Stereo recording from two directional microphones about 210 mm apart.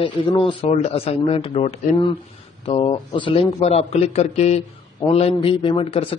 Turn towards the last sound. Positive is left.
turn(degrees=25)  # may be behind; listen again after turning